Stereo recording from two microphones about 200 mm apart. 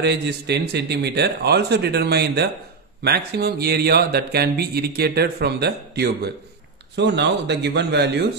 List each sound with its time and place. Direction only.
0.0 s speech: 55° right (ahead or behind)